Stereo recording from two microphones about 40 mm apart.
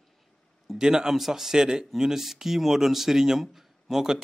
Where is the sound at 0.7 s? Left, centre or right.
Centre.